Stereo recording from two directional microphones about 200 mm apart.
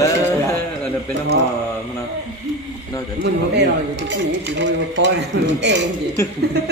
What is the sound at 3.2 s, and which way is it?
Speech, 60° right (ahead or behind).